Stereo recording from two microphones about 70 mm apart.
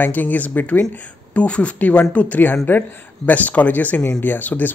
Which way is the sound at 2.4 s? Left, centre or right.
Left.